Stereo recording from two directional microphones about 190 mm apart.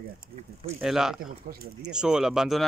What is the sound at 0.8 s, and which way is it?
Speech, 5° right (ahead or behind).